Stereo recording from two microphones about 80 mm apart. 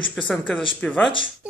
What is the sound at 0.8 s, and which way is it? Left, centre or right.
Speech, centre.